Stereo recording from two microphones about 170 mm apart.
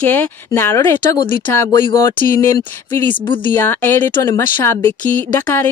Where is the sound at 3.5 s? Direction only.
10° left (ahead or behind).